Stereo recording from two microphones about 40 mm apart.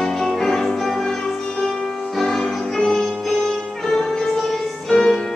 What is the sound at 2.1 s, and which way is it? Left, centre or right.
Music, centre.